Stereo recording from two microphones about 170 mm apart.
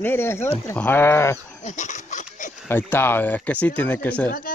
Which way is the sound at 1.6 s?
45° left (ahead or behind).